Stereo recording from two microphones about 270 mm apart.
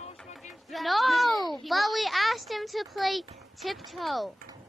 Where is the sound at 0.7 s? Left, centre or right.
Centre.